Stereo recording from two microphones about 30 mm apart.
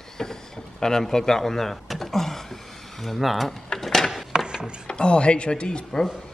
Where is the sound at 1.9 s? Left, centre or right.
Centre.